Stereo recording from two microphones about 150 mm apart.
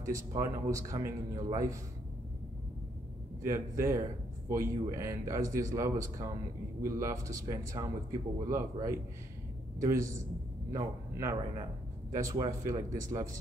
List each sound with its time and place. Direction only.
0.0 s speech: 20° right (ahead or behind)
3.4 s a man's voice: 20° right (ahead or behind)